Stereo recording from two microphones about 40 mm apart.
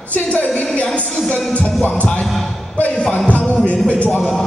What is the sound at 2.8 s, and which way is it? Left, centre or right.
A man's voice, left.